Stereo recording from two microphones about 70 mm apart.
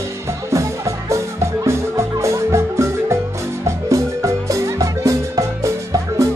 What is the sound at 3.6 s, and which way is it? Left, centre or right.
Marimba, right.